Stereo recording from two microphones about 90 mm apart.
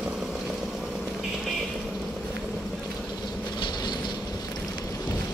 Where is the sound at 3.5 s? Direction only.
50° left (ahead or behind).